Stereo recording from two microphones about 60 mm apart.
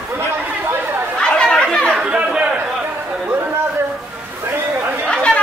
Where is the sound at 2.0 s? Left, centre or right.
Centre.